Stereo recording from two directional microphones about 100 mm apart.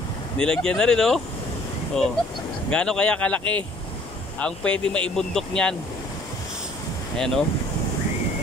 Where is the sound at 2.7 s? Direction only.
10° left (ahead or behind).